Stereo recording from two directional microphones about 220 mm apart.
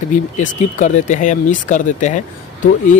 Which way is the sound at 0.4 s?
35° left (ahead or behind).